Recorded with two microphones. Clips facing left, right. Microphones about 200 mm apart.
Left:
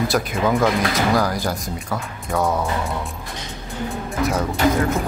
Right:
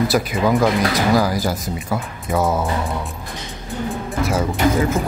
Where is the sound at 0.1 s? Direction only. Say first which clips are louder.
Right 2 dB; centre (ahead or behind).